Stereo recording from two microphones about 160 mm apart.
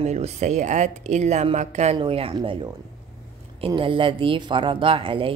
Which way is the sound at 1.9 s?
35° right (ahead or behind).